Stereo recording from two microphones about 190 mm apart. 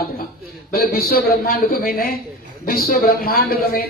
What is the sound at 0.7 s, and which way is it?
A man's voice, 55° left (ahead or behind).